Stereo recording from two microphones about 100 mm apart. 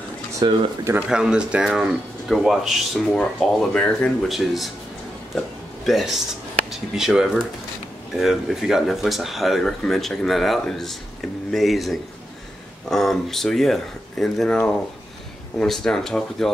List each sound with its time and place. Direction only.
0.4 s speech: 45° right (ahead or behind)
0.9 s speech: 5° right (ahead or behind)
5.9 s speech: centre (ahead or behind)